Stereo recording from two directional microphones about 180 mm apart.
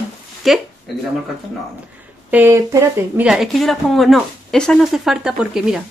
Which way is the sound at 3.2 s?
Centre (ahead or behind).